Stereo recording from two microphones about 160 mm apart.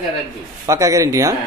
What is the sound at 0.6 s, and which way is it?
Speech, 20° right (ahead or behind).